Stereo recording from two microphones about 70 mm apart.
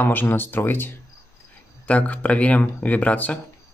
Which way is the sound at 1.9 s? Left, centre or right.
Left.